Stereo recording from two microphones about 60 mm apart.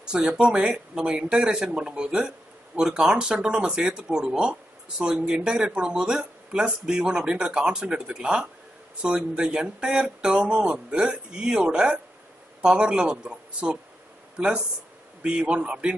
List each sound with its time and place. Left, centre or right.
0.0 s speech: centre